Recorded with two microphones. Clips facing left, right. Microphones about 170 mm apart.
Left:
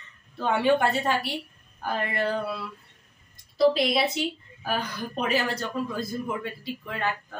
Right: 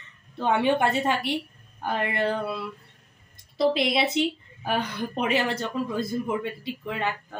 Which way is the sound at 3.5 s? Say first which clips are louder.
Left 1 dB; 25° right (ahead or behind).